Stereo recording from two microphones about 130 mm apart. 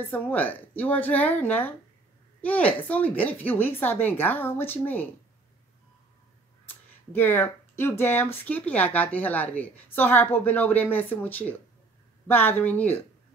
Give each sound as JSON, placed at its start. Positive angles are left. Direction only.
{"t": 0.1, "sound": "speech", "side_deg": 15}
{"t": 6.7, "sound": "speech", "side_deg": 15}